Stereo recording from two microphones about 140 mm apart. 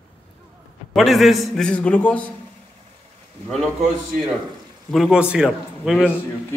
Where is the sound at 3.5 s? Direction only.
5° left (ahead or behind).